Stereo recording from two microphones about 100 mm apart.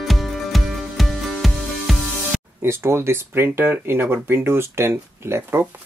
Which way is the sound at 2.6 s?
25° right (ahead or behind).